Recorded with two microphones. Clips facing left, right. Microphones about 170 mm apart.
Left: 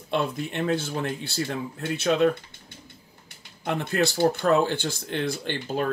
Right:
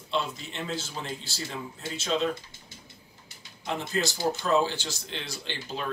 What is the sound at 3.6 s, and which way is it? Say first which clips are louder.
Speech: left 5 dB; 60° left (ahead or behind).